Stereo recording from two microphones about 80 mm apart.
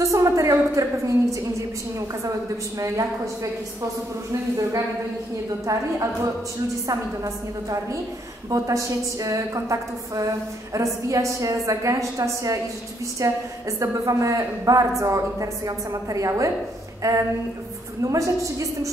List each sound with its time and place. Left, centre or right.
0.0 s a sound: right
4.3 s a woman's voice: right
18.0 s a woman's voice: right